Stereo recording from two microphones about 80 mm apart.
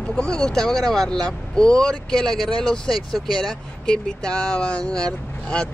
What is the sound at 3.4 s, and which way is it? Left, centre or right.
Speech, centre.